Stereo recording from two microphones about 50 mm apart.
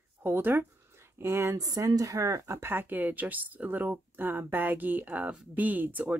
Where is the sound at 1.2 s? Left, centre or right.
Right.